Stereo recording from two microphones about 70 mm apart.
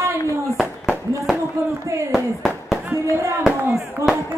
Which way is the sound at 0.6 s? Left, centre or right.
Centre.